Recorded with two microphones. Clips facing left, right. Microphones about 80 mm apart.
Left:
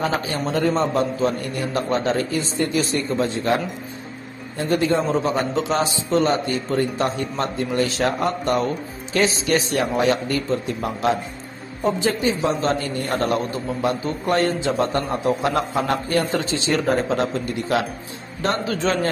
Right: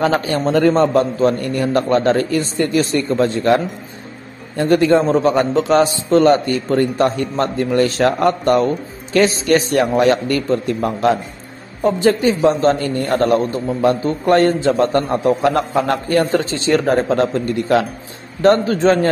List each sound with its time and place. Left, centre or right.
0.0 s a man's voice: right
12.4 s a man's voice: right
12.7 s a man's voice: right